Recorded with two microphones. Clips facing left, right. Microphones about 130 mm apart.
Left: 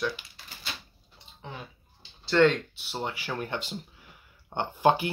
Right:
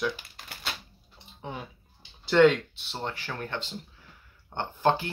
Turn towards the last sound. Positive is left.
turn(degrees=15)  # may be behind; listen again after turning